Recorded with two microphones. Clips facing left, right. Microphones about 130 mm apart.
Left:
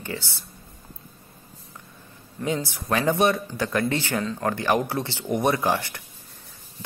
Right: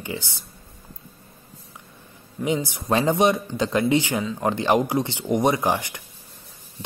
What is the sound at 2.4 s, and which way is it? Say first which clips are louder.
Speech: right 3 dB; 15° right (ahead or behind).